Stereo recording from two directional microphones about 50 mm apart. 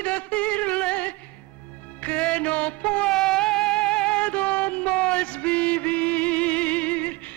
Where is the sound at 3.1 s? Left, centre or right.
Centre; by 7.3 s left.